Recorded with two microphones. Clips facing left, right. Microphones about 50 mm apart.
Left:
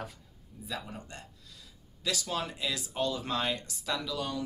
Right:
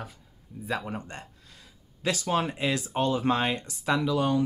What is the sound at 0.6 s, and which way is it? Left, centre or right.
Speech, right.